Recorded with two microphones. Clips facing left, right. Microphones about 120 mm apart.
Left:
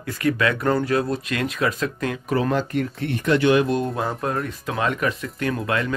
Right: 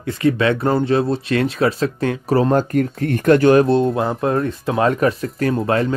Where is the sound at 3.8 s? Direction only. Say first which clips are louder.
Right 7 dB; 25° right (ahead or behind).